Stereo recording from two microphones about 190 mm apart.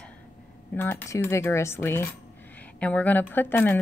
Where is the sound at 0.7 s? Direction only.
10° left (ahead or behind).